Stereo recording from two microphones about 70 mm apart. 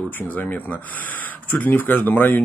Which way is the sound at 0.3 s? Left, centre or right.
Left.